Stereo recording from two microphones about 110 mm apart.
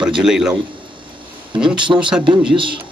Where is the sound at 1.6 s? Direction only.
5° right (ahead or behind).